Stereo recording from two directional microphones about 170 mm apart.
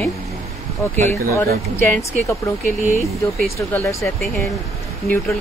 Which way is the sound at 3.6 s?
15° left (ahead or behind).